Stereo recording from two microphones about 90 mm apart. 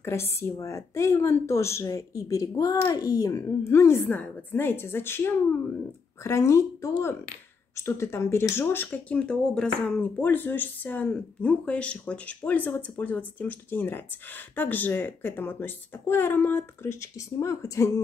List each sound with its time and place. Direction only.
0.0 s a woman's voice: 30° left (ahead or behind)
4.1 s a woman's voice: 20° left (ahead or behind)
9.1 s speech: 10° left (ahead or behind); by 18.0 s 35° left (ahead or behind)